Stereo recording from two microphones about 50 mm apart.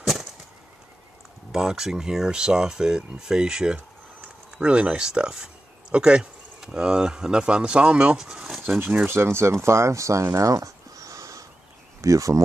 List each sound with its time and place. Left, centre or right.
0.0 s a sound: centre
1.5 s speech: centre
8.2 s speech: centre
8.6 s speech: right
11.0 s a sound: right
12.0 s speech: right